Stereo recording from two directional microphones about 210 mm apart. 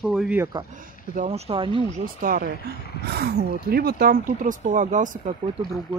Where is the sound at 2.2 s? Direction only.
40° right (ahead or behind).